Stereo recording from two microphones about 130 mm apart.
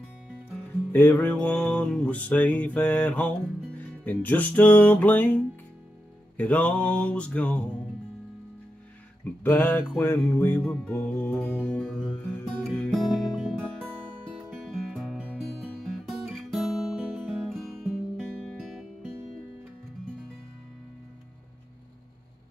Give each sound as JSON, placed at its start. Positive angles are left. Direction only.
{"t": 0.9, "sound": "music", "side_deg": 15}
{"t": 9.4, "sound": "music", "side_deg": 15}
{"t": 15.3, "sound": "guitar", "side_deg": 0}